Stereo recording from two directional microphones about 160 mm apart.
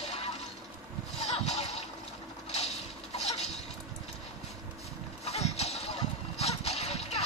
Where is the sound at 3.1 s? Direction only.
40° left (ahead or behind).